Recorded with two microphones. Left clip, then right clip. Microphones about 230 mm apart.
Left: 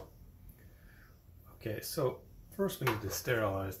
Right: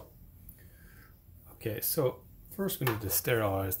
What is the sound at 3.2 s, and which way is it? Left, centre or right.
Speech, right.